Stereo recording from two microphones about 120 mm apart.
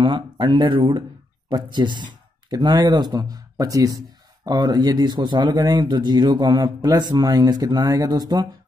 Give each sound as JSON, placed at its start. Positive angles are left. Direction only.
{"t": 0.0, "sound": "a man's voice", "side_deg": -40}